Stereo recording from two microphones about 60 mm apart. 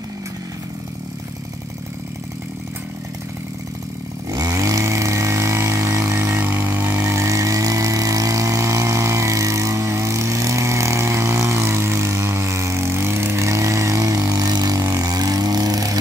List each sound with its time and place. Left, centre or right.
4.3 s chainsaw: right
6.0 s vehicle: right
6.3 s vehicle: right
7.1 s vehicle: right